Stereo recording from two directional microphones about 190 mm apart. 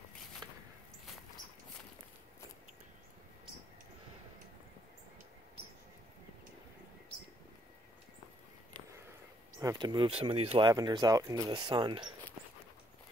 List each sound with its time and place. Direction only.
9.6 s speech: 20° right (ahead or behind)